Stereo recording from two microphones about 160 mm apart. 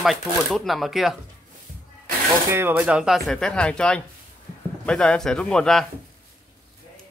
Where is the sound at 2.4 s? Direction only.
15° right (ahead or behind); by 5.9 s 5° left (ahead or behind).